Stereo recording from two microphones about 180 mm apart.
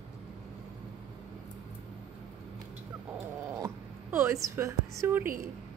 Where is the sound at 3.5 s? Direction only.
15° right (ahead or behind).